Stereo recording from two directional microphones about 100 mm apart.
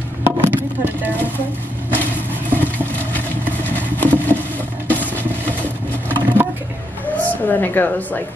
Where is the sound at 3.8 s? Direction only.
20° left (ahead or behind).